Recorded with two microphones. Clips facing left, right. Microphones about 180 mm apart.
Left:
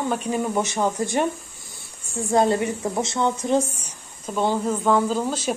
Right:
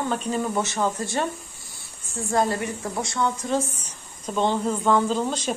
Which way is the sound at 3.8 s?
10° left (ahead or behind).